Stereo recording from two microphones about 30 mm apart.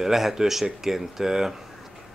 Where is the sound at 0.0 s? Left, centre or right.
Centre.